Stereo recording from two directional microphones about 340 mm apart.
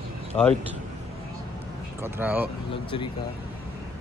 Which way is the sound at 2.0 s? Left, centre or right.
Centre.